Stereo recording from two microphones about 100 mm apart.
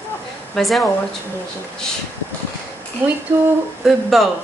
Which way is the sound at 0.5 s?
Centre (ahead or behind).